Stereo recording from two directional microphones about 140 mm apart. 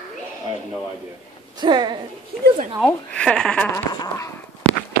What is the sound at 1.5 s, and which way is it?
Speech, 30° right (ahead or behind).